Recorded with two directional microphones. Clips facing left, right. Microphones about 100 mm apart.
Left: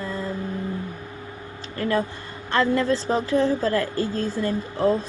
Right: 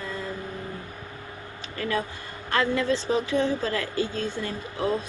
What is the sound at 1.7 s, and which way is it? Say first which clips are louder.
Speech: left 5 dB; 35° left (ahead or behind).